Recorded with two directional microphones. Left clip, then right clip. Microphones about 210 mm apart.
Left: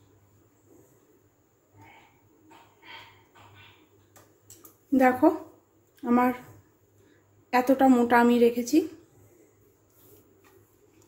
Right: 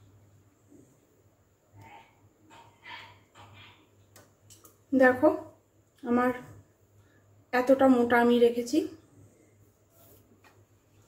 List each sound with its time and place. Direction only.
4.9 s a woman's voice: 35° left (ahead or behind)
7.4 s a woman's voice: 35° left (ahead or behind)